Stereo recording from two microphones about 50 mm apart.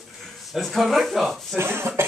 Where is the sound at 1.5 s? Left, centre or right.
Right.